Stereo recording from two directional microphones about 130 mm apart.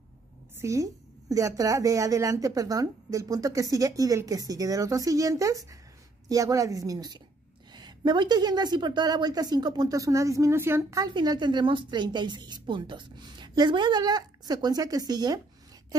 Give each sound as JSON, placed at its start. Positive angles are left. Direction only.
{"t": 0.6, "sound": "a woman's voice", "side_deg": -25}